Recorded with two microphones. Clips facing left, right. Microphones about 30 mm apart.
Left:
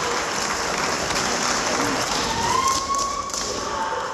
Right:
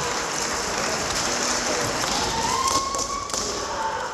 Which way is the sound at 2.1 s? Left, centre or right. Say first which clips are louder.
Left 2 dB; centre.